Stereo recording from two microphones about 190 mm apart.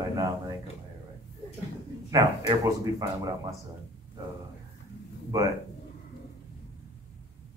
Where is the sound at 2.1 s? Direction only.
20° right (ahead or behind).